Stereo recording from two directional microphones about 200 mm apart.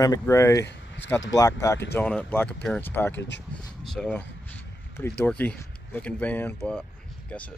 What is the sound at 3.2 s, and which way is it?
Speech, 60° left (ahead or behind).